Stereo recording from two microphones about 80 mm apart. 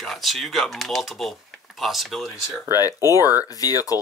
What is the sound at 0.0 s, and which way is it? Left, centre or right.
Speech, centre.